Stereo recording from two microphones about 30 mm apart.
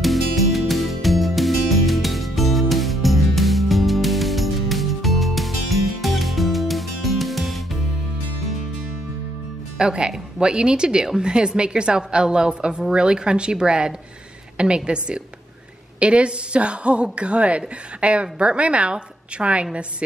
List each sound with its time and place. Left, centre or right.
0.0 s music: centre
9.8 s a woman's voice: right